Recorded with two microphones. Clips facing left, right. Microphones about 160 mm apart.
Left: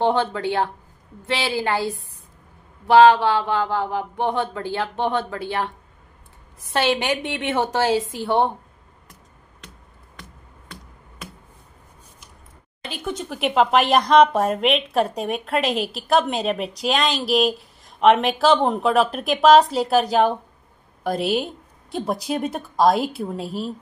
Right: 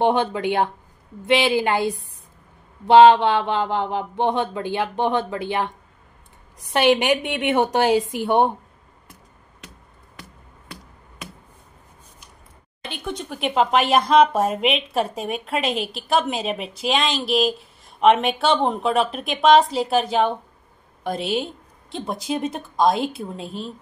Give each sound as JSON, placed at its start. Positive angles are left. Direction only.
{"t": 0.0, "sound": "a woman's voice", "side_deg": -15}
{"t": 6.7, "sound": "a woman's voice", "side_deg": -20}
{"t": 12.9, "sound": "speech", "side_deg": 0}